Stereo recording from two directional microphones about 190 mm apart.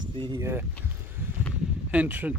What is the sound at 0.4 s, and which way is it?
Speech, 15° right (ahead or behind).